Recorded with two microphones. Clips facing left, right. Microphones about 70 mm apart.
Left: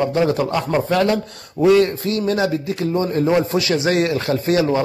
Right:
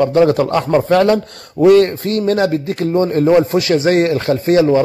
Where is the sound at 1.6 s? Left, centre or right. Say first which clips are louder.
Right 4 dB; right.